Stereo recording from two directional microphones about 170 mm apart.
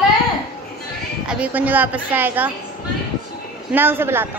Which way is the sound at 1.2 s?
5° right (ahead or behind).